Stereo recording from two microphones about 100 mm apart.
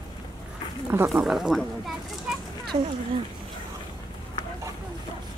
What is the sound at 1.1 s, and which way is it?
Speech, 5° right (ahead or behind).